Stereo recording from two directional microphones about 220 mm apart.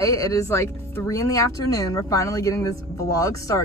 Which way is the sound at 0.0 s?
15° left (ahead or behind).